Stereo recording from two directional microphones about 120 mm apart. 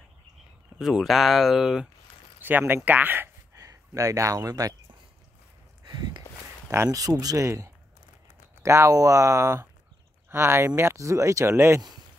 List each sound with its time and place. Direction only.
0.7 s speech: 5° right (ahead or behind)
2.4 s speech: 15° right (ahead or behind)
3.5 s speech: 30° right (ahead or behind)
5.9 s a sound: 35° right (ahead or behind)
6.7 s speech: 25° right (ahead or behind)